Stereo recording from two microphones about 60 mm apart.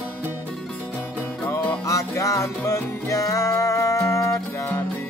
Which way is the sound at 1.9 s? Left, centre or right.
Left.